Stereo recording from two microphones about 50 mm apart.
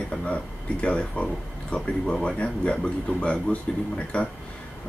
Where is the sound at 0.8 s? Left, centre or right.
Left.